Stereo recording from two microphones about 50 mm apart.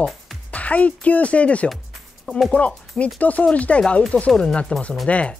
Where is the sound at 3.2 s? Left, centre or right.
Left.